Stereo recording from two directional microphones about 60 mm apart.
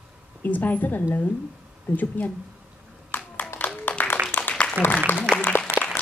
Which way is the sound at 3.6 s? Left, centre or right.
Left.